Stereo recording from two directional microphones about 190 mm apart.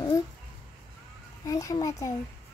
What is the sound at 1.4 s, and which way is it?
Speech, 20° left (ahead or behind).